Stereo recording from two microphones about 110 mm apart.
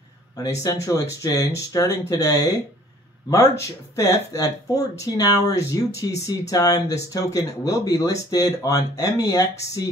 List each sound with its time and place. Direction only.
0.7 s speech: 30° left (ahead or behind)